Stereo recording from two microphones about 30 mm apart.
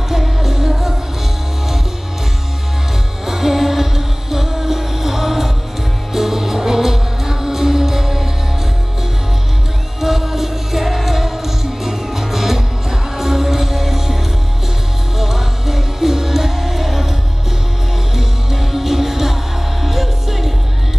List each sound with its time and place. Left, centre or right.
0.2 s music: centre
3.3 s music: centre
9.9 s music: centre
15.1 s music: centre
18.1 s music: centre